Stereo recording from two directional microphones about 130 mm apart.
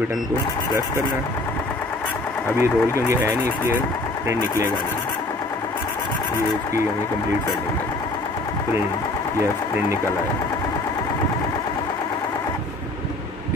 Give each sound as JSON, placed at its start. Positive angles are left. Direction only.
{"t": 2.6, "sound": "speech", "side_deg": -20}